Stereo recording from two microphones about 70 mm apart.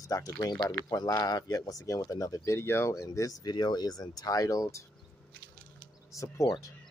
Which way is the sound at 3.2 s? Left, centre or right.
Left.